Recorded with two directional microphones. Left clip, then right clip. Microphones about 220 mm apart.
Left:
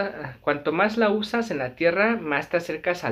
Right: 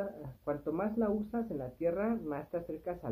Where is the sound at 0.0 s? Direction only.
15° left (ahead or behind).